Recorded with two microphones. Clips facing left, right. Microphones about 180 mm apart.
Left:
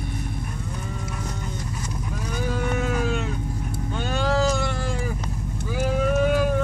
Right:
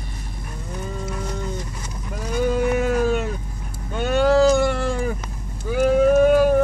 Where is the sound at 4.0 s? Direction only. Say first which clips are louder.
Right 8 dB; 60° right (ahead or behind).